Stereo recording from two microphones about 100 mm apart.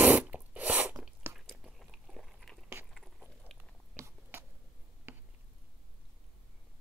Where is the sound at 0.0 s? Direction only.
15° right (ahead or behind).